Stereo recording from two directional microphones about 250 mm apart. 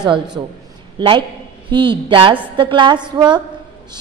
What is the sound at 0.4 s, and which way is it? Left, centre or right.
A woman's voice, centre.